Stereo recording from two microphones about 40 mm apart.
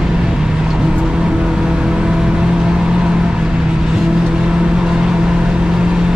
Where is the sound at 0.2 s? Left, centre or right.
Centre.